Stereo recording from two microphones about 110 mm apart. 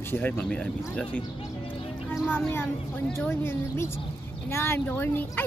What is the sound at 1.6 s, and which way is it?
Music, 55° left (ahead or behind).